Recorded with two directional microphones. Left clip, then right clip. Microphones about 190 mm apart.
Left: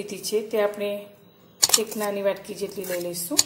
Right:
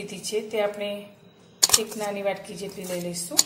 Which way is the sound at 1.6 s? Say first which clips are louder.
Even; centre (ahead or behind).